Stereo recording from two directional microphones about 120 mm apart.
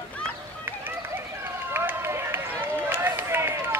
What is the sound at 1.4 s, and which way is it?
Run, 20° right (ahead or behind).